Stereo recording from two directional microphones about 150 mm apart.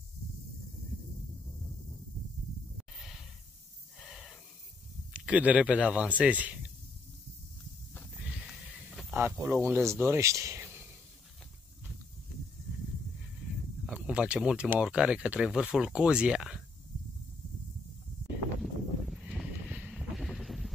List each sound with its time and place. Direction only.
4.0 s wheeze: centre (ahead or behind)
5.1 s speech: 10° right (ahead or behind)
8.5 s a sound: centre (ahead or behind)
9.1 s speech: 15° right (ahead or behind)
13.8 s speech: 5° right (ahead or behind)
18.6 s a sound: centre (ahead or behind)